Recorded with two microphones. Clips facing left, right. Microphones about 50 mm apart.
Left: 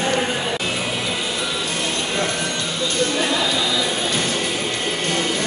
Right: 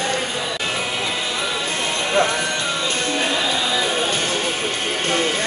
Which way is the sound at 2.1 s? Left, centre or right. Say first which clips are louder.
Right 4 dB; right.